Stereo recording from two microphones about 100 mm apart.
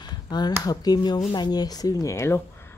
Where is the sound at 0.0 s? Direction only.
45° left (ahead or behind).